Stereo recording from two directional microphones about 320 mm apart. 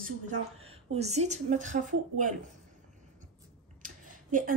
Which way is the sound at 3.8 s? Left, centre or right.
Right.